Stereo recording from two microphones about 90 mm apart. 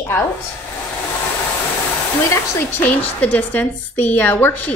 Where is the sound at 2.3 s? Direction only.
25° left (ahead or behind).